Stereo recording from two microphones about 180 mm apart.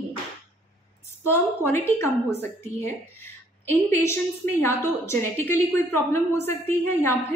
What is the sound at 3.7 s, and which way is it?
A woman's voice, 15° left (ahead or behind).